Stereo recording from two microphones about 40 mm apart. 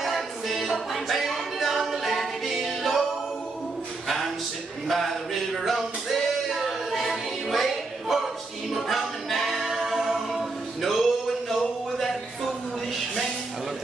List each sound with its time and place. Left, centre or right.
0.0 s music: centre
4.8 s music: centre
8.7 s a capella: centre
10.8 s a sound: centre